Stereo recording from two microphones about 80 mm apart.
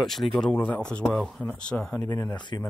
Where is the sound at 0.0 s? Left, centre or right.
Centre.